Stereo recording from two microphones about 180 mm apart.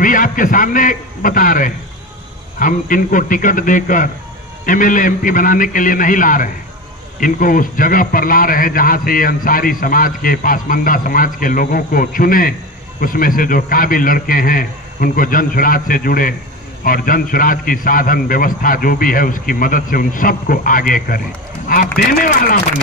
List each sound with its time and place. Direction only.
0.0 s a man's voice: 50° left (ahead or behind)